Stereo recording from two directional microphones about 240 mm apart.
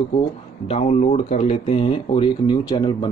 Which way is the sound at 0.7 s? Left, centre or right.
Left.